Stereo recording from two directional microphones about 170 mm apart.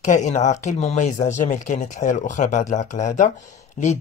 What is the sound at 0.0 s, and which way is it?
Speech, 45° left (ahead or behind).